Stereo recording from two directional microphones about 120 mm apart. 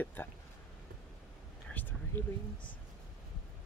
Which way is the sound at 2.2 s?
15° left (ahead or behind).